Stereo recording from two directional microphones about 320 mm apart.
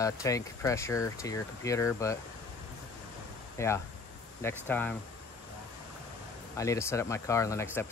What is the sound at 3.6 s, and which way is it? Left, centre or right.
Speech, centre.